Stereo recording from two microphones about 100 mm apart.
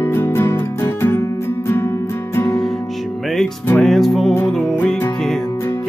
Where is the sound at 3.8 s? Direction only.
Centre (ahead or behind).